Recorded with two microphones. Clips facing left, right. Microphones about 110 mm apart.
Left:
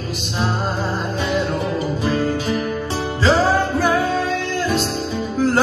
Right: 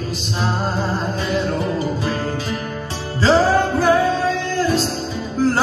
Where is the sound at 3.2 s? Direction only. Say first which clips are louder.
Right 2 dB; 35° right (ahead or behind).